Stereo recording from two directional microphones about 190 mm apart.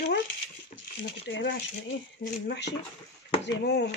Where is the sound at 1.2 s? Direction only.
70° left (ahead or behind).